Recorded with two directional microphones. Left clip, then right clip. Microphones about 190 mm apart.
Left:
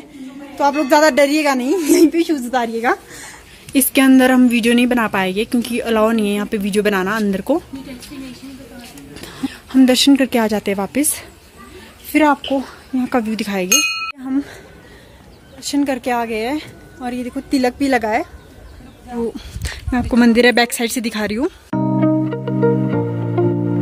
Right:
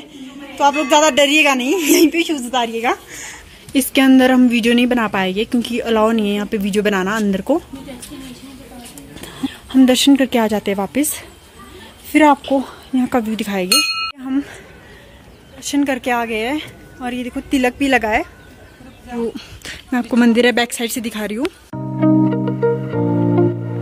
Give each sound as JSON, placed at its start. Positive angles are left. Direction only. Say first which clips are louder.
{"t": 0.6, "sound": "a woman's voice", "louder": "even", "side_deg": 30}
{"t": 2.1, "sound": "a woman's voice", "louder": "even", "side_deg": 30}
{"t": 3.9, "sound": "a woman's voice", "louder": "even", "side_deg": 0}
{"t": 9.2, "sound": "speech", "louder": "right 1 dB", "side_deg": 0}
{"t": 15.6, "sound": "a woman's voice", "louder": "right 1 dB", "side_deg": -5}
{"t": 21.6, "sound": "music", "louder": "even", "side_deg": 0}